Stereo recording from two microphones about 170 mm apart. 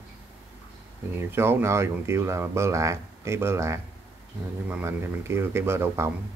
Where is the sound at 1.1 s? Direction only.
15° right (ahead or behind).